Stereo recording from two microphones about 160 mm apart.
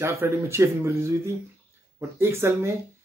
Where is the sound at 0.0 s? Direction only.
15° right (ahead or behind).